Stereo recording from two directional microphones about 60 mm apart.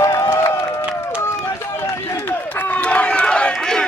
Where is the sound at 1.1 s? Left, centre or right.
Left.